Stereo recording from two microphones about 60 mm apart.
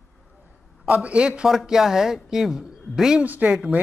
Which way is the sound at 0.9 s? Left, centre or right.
Centre.